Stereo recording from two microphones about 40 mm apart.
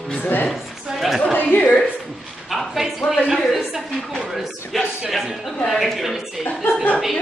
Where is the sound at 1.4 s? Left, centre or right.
Left.